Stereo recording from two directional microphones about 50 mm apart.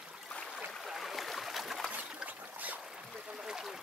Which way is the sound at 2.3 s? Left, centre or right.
Right.